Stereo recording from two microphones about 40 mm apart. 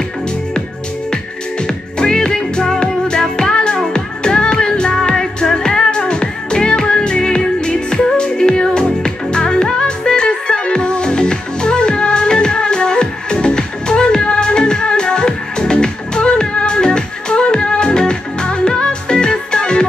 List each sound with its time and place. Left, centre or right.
1.1 s music: left